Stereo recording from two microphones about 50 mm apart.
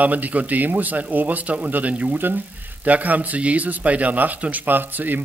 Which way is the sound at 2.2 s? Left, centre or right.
Right.